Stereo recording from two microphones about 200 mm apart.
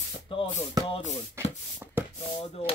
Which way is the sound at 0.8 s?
30° left (ahead or behind).